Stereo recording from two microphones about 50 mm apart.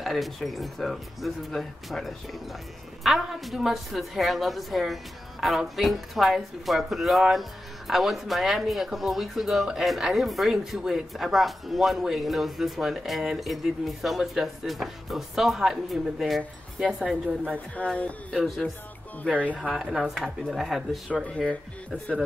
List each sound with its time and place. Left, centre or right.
0.0 s a woman's voice: centre
16.8 s speech: centre
17.8 s speech: left
19.8 s a woman's voice: centre
21.3 s speech: left